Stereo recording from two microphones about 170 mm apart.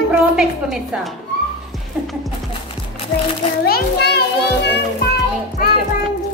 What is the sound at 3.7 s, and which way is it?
A child's voice, 75° left (ahead or behind).